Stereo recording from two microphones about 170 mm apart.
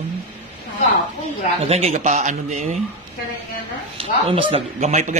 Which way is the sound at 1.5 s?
35° right (ahead or behind).